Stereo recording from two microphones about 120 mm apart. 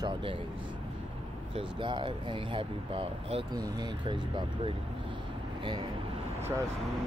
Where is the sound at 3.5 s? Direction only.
35° right (ahead or behind).